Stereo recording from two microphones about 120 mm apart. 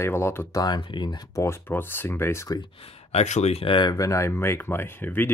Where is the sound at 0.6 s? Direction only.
40° left (ahead or behind).